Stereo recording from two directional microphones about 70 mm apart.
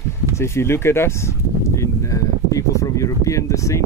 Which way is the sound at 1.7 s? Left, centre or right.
Left.